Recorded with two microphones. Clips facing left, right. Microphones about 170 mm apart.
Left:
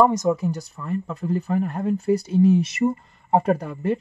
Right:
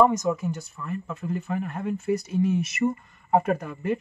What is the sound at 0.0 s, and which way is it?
Speech, 35° left (ahead or behind).